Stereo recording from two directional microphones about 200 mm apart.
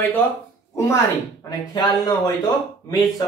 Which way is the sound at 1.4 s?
20° left (ahead or behind).